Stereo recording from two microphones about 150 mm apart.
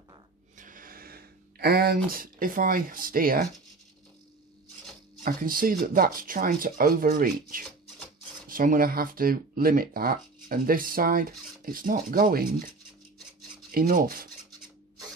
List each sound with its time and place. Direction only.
0.6 s a sound: 65° right (ahead or behind); by 2.0 s 90° right
2.0 s speech: 70° right (ahead or behind)
5.2 s speech: 70° right (ahead or behind)
13.7 s rub: 70° right (ahead or behind)